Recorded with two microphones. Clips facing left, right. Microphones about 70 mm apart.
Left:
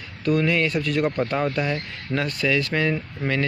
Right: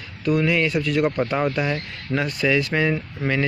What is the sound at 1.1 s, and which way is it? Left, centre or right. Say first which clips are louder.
Speech: right 1 dB; centre.